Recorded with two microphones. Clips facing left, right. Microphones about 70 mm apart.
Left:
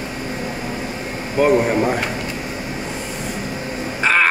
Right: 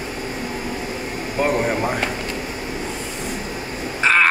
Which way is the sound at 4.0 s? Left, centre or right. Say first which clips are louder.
Even; centre.